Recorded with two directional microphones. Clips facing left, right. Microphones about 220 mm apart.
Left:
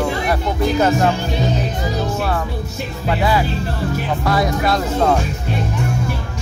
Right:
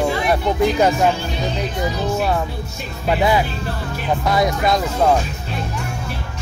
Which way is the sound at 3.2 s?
20° right (ahead or behind).